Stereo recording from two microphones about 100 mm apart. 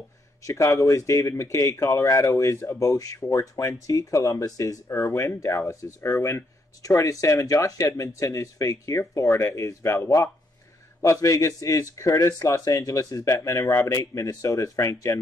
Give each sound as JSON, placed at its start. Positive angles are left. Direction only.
{"t": 0.4, "sound": "speech", "side_deg": 30}